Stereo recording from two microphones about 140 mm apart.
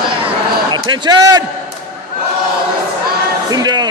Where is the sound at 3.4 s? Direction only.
30° right (ahead or behind).